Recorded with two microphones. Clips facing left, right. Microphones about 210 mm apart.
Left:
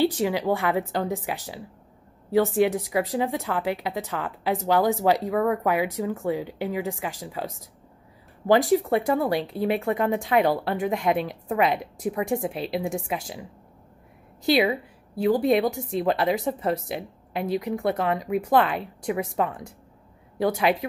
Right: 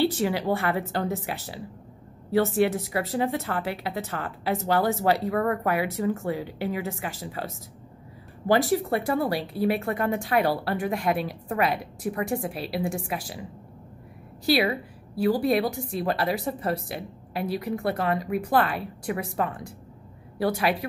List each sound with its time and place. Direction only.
0.0 s a woman's voice: 15° left (ahead or behind)
5.4 s speech: 5° left (ahead or behind)
5.7 s a woman's voice: 15° left (ahead or behind)
14.4 s a woman's voice: 15° left (ahead or behind)